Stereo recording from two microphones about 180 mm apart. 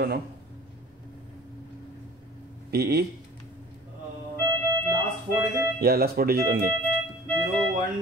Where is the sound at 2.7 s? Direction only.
60° right (ahead or behind).